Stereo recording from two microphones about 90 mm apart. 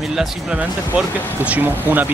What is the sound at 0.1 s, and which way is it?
Speech, 5° right (ahead or behind).